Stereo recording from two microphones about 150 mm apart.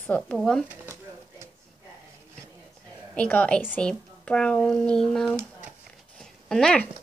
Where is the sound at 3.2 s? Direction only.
10° left (ahead or behind).